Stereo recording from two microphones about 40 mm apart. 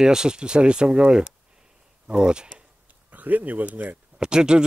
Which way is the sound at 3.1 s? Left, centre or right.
Right.